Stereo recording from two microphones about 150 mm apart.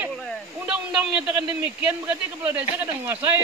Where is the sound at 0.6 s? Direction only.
5° right (ahead or behind).